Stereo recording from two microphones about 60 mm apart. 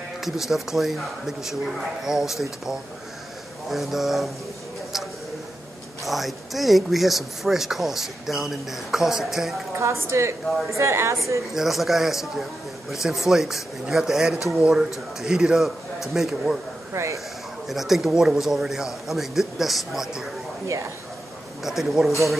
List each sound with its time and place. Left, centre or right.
0.2 s speech: centre
6.0 s speech: centre
9.8 s a woman's voice: right
11.5 s speech: centre
16.9 s speech: right
17.6 s speech: centre
20.6 s speech: right
21.6 s speech: centre